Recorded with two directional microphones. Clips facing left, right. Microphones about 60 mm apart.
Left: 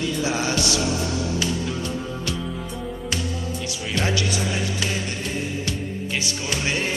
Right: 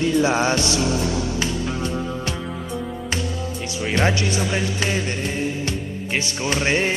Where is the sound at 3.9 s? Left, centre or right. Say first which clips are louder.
Right 4 dB; right.